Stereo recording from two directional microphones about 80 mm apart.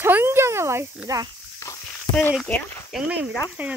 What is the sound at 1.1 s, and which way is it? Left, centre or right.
Speech, right.